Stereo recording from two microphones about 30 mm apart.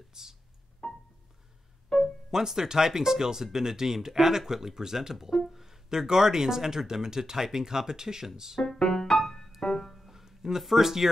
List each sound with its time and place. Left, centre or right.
0.1 s music: centre
0.8 s music: left
2.3 s speech: centre
5.1 s speech: centre
5.5 s music: centre
5.9 s speech: centre
8.6 s speech: left
8.9 s music: centre
10.0 s music: centre
10.8 s speech: centre